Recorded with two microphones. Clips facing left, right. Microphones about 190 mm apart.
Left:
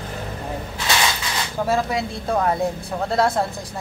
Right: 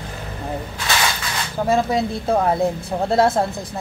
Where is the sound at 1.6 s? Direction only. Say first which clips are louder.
Right 4 dB; 20° right (ahead or behind).